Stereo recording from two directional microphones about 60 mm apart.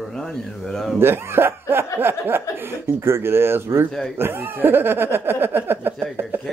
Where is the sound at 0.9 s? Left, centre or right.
Right.